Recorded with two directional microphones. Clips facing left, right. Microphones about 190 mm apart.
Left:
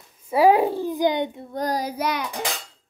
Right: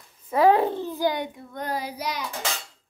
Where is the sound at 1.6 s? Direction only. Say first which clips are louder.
Left 5 dB; 40° left (ahead or behind); by 2.2 s 55° left (ahead or behind).